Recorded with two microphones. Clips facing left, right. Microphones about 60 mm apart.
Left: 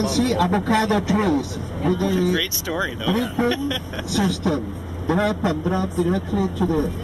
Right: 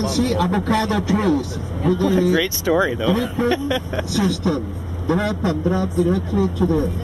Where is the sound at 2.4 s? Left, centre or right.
Right.